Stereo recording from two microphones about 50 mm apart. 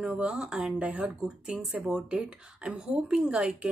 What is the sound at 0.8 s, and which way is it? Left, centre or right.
Speech, right.